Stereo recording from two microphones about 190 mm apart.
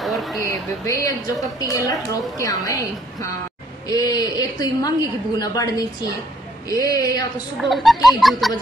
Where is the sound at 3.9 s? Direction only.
20° left (ahead or behind).